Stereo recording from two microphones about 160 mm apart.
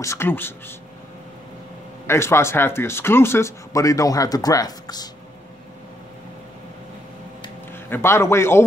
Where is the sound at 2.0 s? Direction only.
15° left (ahead or behind).